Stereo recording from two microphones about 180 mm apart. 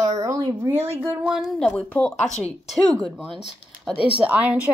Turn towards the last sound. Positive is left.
turn(degrees=-10)  # may be behind; listen again after turning